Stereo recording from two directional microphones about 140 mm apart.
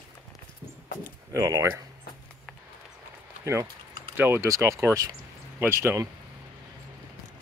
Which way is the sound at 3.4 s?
20° right (ahead or behind).